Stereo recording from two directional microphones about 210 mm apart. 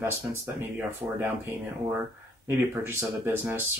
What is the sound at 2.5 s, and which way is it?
Speech, 10° right (ahead or behind).